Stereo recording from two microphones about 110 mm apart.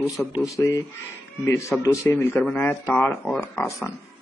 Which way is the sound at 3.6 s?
30° left (ahead or behind).